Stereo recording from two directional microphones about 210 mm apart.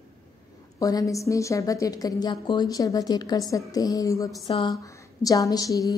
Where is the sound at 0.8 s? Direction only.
15° left (ahead or behind).